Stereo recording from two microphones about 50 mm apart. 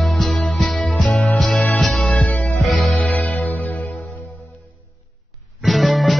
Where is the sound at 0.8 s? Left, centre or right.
Centre.